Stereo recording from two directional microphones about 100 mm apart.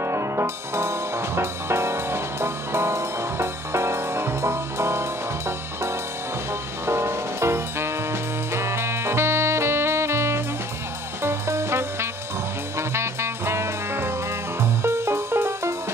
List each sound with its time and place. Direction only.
0.0 s music: 25° right (ahead or behind)
6.9 s music: 25° right (ahead or behind)